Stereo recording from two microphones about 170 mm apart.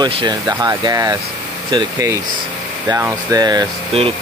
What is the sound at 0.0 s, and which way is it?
Speech, 25° right (ahead or behind).